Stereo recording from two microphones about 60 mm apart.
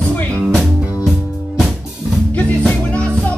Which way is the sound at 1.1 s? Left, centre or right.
Centre.